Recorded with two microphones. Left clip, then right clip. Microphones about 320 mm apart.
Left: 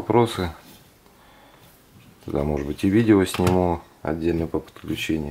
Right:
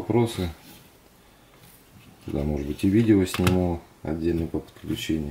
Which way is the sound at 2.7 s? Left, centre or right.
Centre.